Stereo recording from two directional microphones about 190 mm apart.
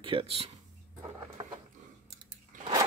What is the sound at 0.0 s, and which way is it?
Speech, 30° right (ahead or behind).